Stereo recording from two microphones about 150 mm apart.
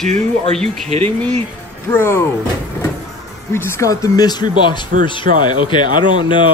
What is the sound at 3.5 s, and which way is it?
Speech, 15° left (ahead or behind).